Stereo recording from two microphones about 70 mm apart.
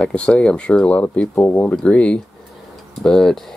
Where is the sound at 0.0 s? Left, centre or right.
Centre.